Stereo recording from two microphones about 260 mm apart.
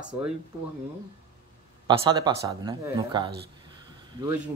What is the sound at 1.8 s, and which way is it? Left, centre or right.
Speech, centre.